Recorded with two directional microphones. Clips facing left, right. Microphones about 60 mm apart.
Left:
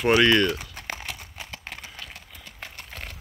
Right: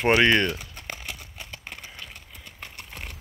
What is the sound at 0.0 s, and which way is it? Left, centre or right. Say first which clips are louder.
Speech: left 1 dB; right.